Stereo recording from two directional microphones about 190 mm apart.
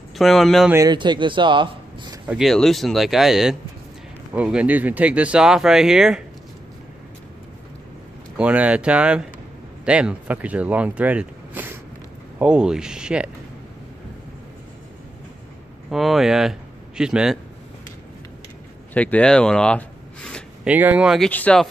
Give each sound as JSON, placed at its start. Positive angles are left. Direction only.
{"t": 0.2, "sound": "speech", "side_deg": 0}
{"t": 0.7, "sound": "a man's voice", "side_deg": -20}
{"t": 2.2, "sound": "speech", "side_deg": 0}
{"t": 8.4, "sound": "speech", "side_deg": -5}
{"t": 15.9, "sound": "speech", "side_deg": 0}
{"t": 18.9, "sound": "speech", "side_deg": 5}
{"t": 20.6, "sound": "speech", "side_deg": -5}
{"t": 21.3, "sound": "speech", "side_deg": 5}